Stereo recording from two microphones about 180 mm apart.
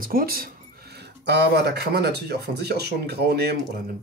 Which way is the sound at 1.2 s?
70° right (ahead or behind).